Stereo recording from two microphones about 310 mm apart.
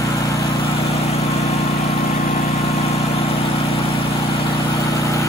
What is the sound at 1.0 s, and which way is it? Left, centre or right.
Vehicle, centre.